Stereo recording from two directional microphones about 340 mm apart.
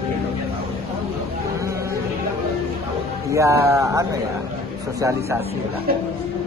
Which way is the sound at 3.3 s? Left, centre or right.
Centre.